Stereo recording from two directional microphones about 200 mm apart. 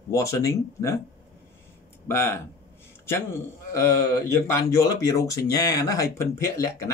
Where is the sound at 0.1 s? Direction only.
15° left (ahead or behind).